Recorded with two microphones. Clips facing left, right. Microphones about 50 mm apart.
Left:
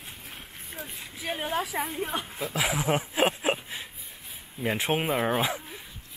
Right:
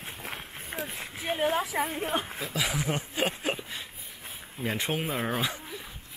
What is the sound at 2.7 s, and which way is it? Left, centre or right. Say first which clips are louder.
Speech: left 4 dB; centre.